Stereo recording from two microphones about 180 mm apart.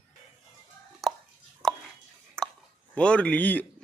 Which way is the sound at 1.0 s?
Centre (ahead or behind).